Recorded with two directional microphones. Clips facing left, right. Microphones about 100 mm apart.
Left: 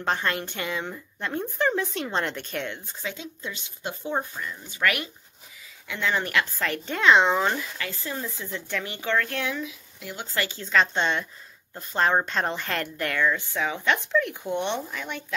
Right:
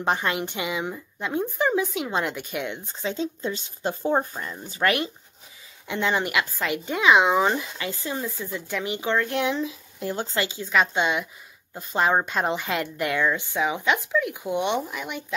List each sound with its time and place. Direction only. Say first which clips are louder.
0.0 s a woman's voice: right 2 dB; 15° right (ahead or behind)
3.0 s a woman's voice: right 9 dB; 30° right (ahead or behind)
9.6 s speech: right 6 dB; 35° right (ahead or behind)
10.2 s a woman's voice: right 2 dB; 20° right (ahead or behind)